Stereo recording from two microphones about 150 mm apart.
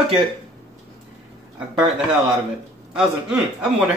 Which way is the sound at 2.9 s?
5° right (ahead or behind).